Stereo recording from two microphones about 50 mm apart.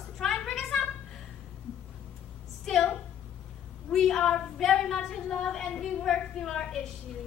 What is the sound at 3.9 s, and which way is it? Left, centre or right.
A woman's voice, centre.